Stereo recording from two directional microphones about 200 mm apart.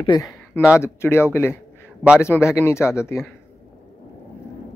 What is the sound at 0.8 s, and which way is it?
Speech, 10° left (ahead or behind).